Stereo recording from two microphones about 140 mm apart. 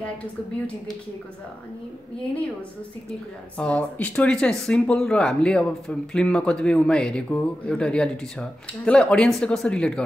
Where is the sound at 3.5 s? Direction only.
10° left (ahead or behind).